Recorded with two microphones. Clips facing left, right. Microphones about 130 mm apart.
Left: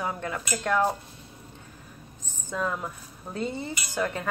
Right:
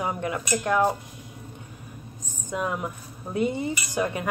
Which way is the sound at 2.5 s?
15° right (ahead or behind).